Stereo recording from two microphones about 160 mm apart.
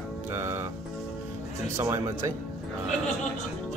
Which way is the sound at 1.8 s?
15° right (ahead or behind).